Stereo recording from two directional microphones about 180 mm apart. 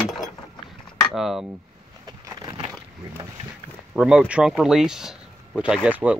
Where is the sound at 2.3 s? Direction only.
20° right (ahead or behind).